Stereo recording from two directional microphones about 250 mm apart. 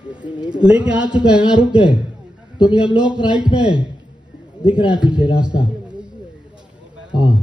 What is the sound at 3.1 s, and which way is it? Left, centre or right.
Speech, centre.